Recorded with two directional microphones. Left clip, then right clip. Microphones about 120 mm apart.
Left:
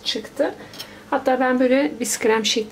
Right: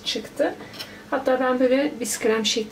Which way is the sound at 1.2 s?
30° left (ahead or behind).